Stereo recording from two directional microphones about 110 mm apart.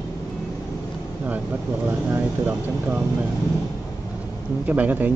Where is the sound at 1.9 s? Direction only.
20° right (ahead or behind).